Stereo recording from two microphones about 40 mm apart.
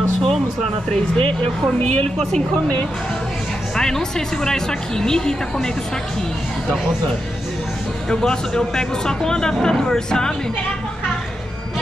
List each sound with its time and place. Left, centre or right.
3.7 s a woman's voice: centre
8.1 s speech: centre